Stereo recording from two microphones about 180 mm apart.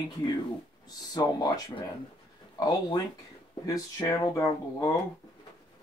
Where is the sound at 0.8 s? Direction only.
20° left (ahead or behind).